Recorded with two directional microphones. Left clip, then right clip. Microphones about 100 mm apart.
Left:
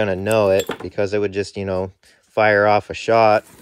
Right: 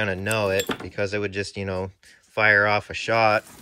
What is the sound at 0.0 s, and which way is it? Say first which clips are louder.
Speech: left 7 dB; 35° left (ahead or behind).